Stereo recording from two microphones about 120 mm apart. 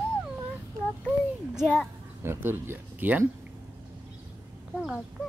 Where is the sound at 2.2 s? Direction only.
20° right (ahead or behind).